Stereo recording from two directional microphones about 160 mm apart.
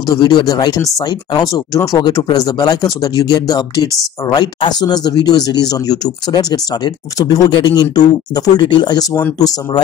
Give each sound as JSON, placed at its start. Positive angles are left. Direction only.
{"t": 0.1, "sound": "speech", "side_deg": 25}